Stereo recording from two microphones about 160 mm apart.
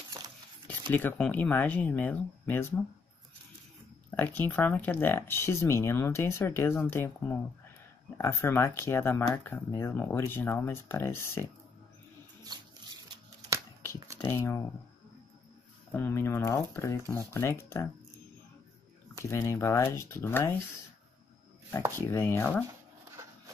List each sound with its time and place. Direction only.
0.9 s speech: 10° left (ahead or behind)
4.2 s speech: 10° left (ahead or behind)
14.1 s speech: 15° left (ahead or behind)
15.9 s speech: 15° left (ahead or behind)
19.2 s speech: 20° left (ahead or behind)
21.9 s speech: 15° left (ahead or behind)